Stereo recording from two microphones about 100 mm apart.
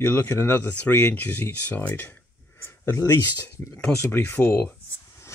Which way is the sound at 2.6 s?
25° left (ahead or behind).